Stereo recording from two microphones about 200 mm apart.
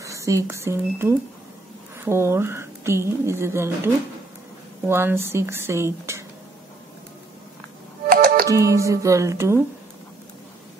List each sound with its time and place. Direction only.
0.0 s speech: 15° right (ahead or behind)
8.5 s speech: 15° right (ahead or behind)